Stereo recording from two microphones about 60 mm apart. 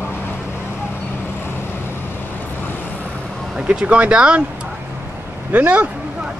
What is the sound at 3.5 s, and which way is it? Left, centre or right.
Speech, centre.